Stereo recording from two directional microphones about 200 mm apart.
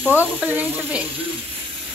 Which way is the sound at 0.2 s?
10° right (ahead or behind).